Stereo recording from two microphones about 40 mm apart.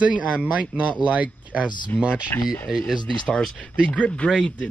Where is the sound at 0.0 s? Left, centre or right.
Right.